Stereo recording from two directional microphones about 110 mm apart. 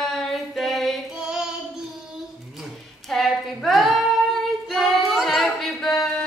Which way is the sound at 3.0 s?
Centre (ahead or behind).